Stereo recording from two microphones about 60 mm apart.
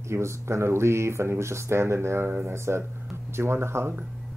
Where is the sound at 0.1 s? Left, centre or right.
Right.